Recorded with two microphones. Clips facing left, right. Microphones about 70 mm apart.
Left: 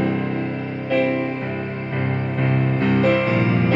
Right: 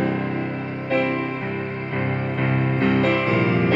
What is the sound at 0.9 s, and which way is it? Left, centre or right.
Music, right.